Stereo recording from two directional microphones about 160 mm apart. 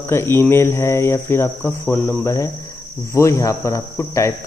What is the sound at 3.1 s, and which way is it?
Cricket, 20° left (ahead or behind).